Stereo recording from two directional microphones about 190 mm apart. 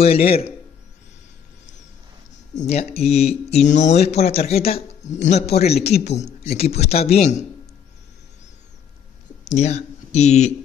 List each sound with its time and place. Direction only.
0.0 s speech: 30° left (ahead or behind)
2.5 s speech: 35° left (ahead or behind)
9.4 s speech: 35° left (ahead or behind)